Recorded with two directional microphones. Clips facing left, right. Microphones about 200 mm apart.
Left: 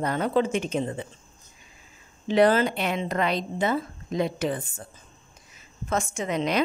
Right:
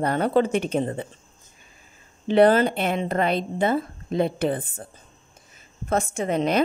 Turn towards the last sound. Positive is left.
turn(degrees=-55)  # may be behind; listen again after turning